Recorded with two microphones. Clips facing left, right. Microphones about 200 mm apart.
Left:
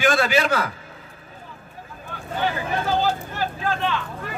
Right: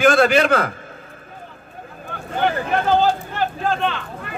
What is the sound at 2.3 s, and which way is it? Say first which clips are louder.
Speech: right 5 dB; 55° right (ahead or behind).